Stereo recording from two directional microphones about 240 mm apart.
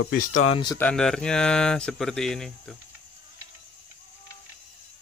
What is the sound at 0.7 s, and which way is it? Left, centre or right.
Speech, centre.